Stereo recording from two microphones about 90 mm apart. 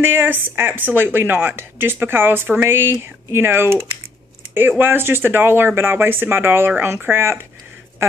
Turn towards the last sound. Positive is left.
turn(degrees=-25)  # may be behind; listen again after turning